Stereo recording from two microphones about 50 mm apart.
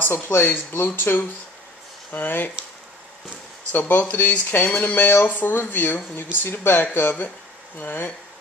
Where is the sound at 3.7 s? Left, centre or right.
Left.